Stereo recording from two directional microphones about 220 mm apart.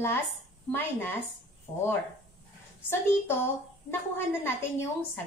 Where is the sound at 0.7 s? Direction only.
10° left (ahead or behind).